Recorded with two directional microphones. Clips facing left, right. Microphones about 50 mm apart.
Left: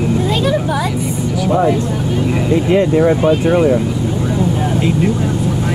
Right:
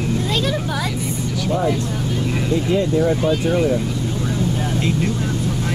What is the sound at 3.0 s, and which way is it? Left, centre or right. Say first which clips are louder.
Speech: left 6 dB; left.